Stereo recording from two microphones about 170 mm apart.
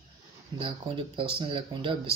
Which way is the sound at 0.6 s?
30° right (ahead or behind).